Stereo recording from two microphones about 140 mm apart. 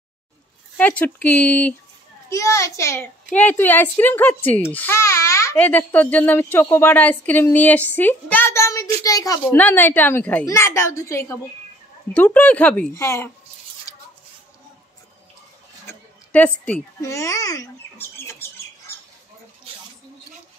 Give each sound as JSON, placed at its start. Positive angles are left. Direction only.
{"t": 0.7, "sound": "a child's voice", "side_deg": 10}
{"t": 2.2, "sound": "a woman's voice", "side_deg": 20}
{"t": 9.6, "sound": "a child's voice", "side_deg": 15}
{"t": 15.9, "sound": "a sound", "side_deg": 10}
{"t": 17.0, "sound": "rodents", "side_deg": 20}